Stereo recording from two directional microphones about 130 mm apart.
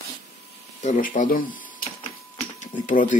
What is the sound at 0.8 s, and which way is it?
Speech, 80° left.